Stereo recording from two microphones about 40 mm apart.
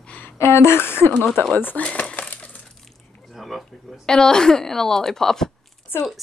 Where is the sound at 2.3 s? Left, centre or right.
Left.